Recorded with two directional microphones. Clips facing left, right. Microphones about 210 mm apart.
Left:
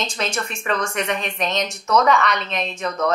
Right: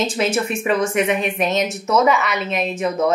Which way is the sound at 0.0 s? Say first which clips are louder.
Right 6 dB; 5° right (ahead or behind).